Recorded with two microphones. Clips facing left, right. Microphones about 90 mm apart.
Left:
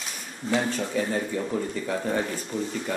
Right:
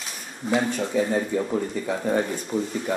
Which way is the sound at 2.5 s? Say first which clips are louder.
Right 4 dB; 35° right (ahead or behind).